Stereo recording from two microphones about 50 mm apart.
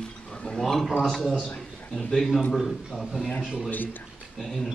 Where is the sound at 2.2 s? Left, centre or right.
Centre.